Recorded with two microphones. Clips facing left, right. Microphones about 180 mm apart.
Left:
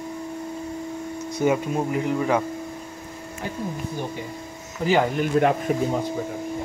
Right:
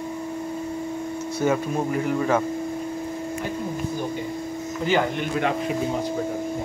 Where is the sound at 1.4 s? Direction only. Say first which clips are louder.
Left 1 dB; 15° left (ahead or behind).